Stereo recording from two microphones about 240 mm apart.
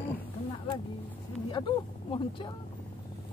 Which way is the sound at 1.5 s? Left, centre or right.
Centre.